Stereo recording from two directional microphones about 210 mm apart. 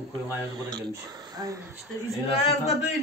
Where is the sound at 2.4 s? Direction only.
Centre (ahead or behind).